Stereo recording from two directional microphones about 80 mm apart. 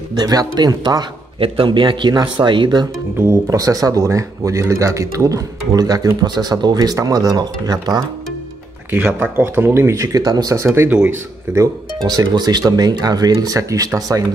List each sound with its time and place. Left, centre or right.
0.1 s speech: right
1.6 s a man's voice: right
2.1 s speech: right
3.4 s speech: right
8.9 s speech: right
12.1 s speech: right